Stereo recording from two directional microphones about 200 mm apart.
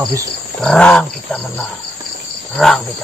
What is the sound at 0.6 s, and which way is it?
Speech, 5° left (ahead or behind).